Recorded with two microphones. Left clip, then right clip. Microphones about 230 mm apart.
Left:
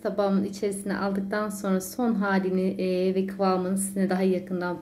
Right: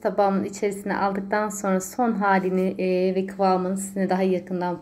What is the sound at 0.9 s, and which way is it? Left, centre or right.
A woman's voice, centre.